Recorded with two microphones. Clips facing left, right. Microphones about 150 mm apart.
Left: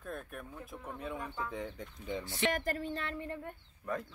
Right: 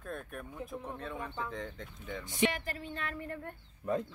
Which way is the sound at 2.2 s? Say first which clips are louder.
Right 7 dB; 15° right (ahead or behind).